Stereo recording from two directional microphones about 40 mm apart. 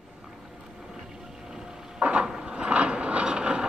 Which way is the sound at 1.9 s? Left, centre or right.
Right.